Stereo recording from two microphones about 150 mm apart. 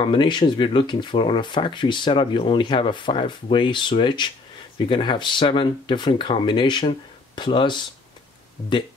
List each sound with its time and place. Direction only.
0.0 s speech: 30° left (ahead or behind)